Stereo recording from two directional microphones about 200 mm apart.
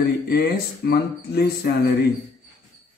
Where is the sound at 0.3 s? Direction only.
50° left (ahead or behind).